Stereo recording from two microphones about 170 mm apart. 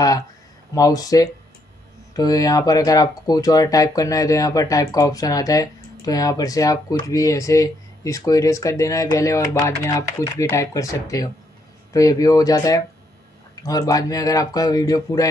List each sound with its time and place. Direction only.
0.7 s speech: 20° left (ahead or behind)